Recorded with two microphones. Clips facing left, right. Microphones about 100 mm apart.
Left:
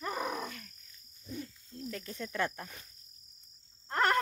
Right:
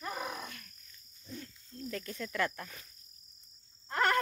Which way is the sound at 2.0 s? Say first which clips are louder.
Even; 25° left (ahead or behind).